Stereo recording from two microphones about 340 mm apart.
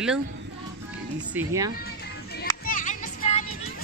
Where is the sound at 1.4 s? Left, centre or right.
Centre.